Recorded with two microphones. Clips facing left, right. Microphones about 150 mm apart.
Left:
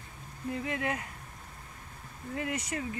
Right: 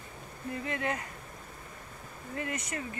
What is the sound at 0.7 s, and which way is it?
Speech, 10° left (ahead or behind).